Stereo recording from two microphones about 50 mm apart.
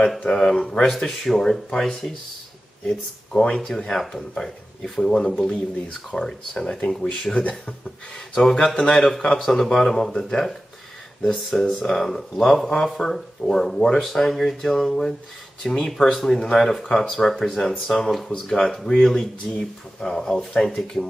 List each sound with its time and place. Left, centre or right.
0.2 s speech: centre
0.8 s speech: centre
3.5 s speech: centre
16.1 s speech: centre